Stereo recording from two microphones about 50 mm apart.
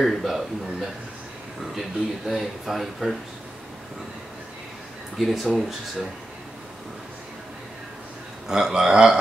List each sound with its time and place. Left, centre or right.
0.0 s speech: centre
5.2 s speech: centre
8.5 s speech: centre